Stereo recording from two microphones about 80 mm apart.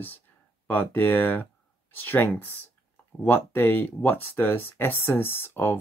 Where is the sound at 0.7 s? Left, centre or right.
Left.